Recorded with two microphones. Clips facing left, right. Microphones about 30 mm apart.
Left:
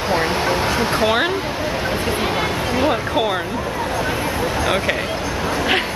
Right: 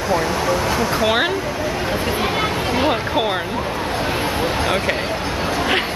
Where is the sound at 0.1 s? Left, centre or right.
Left.